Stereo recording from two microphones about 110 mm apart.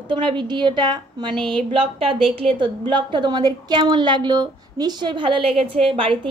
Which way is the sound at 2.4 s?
50° right (ahead or behind).